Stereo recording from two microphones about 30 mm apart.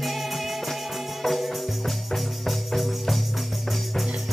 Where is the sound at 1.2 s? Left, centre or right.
Centre.